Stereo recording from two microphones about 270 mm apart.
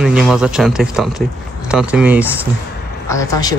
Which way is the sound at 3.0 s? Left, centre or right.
Centre.